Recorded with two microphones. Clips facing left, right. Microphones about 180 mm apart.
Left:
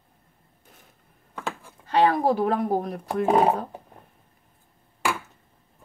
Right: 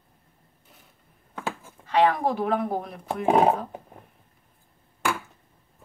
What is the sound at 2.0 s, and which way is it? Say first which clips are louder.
Speech: left 2 dB; 35° left (ahead or behind).